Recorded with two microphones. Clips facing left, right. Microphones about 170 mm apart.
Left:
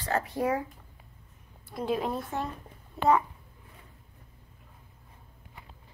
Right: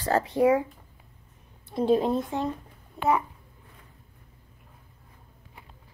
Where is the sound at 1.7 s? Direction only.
30° right (ahead or behind).